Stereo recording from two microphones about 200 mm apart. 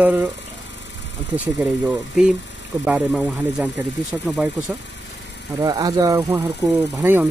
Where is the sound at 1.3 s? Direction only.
5° right (ahead or behind).